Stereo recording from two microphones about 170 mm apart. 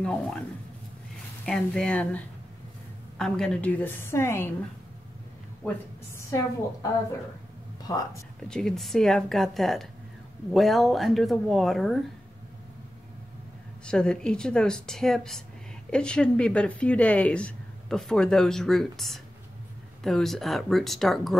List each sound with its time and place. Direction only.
0.0 s a woman's voice: 5° left (ahead or behind)
6.1 s a woman's voice: 15° left (ahead or behind)
7.9 s speech: 20° left (ahead or behind)
8.5 s a woman's voice: 5° left (ahead or behind)
13.8 s a woman's voice: 5° left (ahead or behind)